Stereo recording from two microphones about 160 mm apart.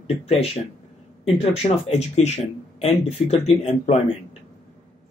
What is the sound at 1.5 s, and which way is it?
Speech, 40° left (ahead or behind).